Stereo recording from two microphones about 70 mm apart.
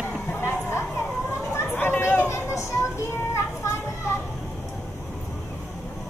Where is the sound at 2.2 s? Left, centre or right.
Left.